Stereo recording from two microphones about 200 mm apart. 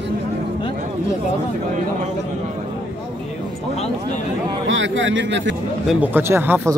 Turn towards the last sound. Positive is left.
turn(degrees=-10)  # may be behind; listen again after turning